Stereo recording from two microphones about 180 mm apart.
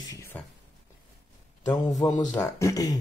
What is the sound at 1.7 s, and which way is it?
Speech, 20° left (ahead or behind).